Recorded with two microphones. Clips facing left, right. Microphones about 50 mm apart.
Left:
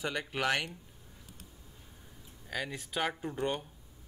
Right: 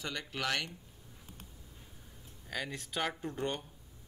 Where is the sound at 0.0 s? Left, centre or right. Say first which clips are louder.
Left 5 dB; centre.